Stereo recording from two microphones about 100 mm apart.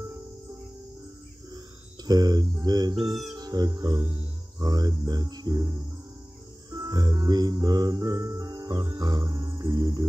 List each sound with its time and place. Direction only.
2.0 s cricket: 40° right (ahead or behind)
3.3 s speech: 40° right (ahead or behind)
4.6 s cricket: 40° right (ahead or behind)
6.7 s music: 40° right (ahead or behind)